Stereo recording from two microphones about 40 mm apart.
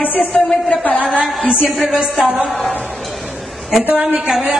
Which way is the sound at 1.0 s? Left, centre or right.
Centre.